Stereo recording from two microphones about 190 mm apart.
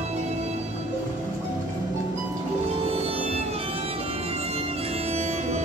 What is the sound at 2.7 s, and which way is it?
Music, 30° right (ahead or behind).